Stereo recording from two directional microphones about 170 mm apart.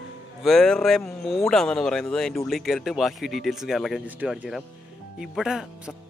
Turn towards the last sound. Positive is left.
turn(degrees=-5)  # may be behind; listen again after turning